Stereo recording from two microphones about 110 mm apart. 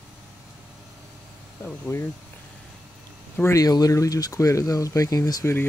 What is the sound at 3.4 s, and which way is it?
Speech, 30° left (ahead or behind).